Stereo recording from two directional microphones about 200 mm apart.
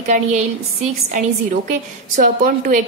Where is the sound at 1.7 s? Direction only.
40° right (ahead or behind).